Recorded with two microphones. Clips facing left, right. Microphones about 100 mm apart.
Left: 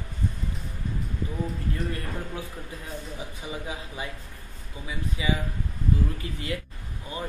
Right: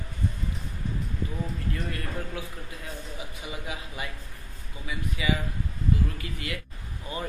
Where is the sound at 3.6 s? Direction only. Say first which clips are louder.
Left 1 dB; 25° left (ahead or behind).